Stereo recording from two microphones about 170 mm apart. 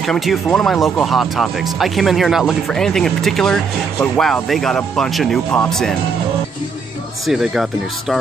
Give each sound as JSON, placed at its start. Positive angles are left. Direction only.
{"t": 0.0, "sound": "speech", "side_deg": 0}
{"t": 7.2, "sound": "speech", "side_deg": 0}